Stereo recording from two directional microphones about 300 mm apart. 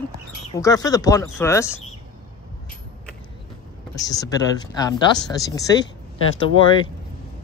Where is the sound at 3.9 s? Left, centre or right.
Centre.